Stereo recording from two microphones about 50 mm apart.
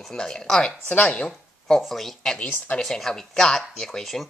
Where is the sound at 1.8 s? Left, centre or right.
Centre.